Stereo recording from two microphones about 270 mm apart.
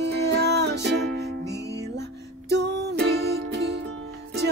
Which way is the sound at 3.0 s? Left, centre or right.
Right.